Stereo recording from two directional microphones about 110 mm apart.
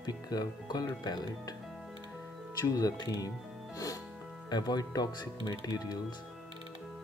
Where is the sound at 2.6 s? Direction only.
35° left (ahead or behind).